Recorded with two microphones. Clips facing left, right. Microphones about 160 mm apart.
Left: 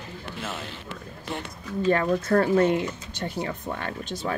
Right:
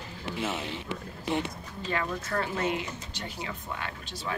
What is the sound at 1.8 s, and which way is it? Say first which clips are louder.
Speech: left 10 dB; 45° left (ahead or behind).